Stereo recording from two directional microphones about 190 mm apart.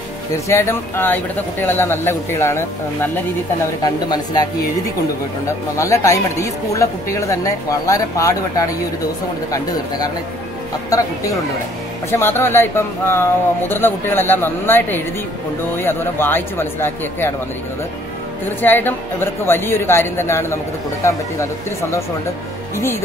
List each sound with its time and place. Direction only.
0.5 s speech: 15° left (ahead or behind)
5.8 s speech: 15° left (ahead or behind)
9.5 s speech: 20° left (ahead or behind)
18.6 s speech: 10° left (ahead or behind)
22.8 s speech: 15° left (ahead or behind)